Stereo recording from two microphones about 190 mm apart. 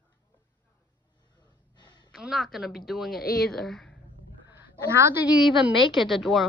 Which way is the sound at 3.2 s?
55° left (ahead or behind).